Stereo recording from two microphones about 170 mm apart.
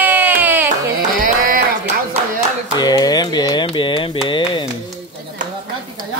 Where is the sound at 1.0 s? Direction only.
50° right (ahead or behind).